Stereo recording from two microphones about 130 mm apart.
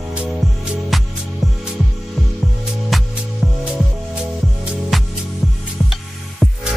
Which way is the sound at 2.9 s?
Centre (ahead or behind).